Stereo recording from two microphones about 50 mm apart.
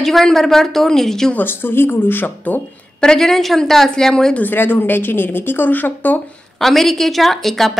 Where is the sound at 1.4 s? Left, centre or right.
Left.